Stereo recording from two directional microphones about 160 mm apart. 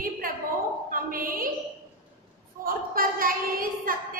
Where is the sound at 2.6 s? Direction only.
60° right (ahead or behind).